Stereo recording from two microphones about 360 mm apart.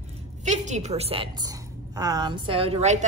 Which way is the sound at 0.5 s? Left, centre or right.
Centre.